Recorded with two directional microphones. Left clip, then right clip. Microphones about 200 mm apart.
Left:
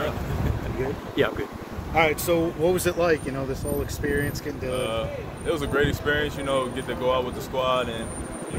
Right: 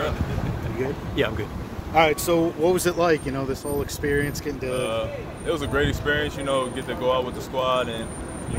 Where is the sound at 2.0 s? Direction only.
55° right (ahead or behind).